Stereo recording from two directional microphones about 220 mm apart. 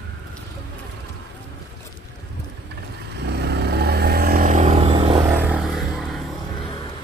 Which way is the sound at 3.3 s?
50° right (ahead or behind).